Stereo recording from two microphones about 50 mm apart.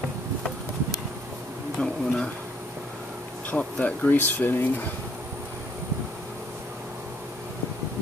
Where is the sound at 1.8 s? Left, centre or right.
Centre.